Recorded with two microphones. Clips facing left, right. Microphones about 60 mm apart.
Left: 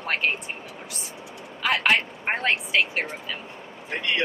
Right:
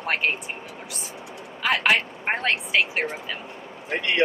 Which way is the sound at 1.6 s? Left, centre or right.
Centre.